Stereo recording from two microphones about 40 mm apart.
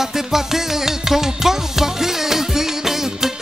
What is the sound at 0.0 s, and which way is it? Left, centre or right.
Music, centre.